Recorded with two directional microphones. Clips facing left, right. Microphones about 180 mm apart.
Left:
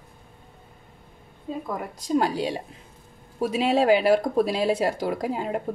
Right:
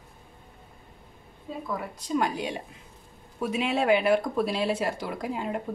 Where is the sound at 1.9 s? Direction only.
40° left (ahead or behind).